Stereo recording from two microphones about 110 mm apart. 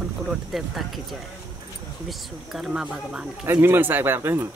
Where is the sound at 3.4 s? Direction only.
20° right (ahead or behind).